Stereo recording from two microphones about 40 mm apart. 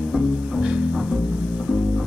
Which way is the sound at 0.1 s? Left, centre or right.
Centre.